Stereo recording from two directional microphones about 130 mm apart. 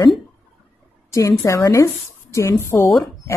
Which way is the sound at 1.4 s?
25° left (ahead or behind).